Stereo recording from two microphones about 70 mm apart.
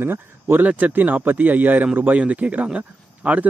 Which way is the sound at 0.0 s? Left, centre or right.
Right.